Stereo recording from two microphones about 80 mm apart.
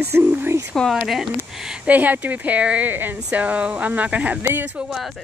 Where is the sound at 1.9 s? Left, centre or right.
Right.